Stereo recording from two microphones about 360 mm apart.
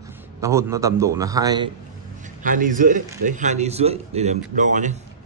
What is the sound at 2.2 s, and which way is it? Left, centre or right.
A man's voice, right.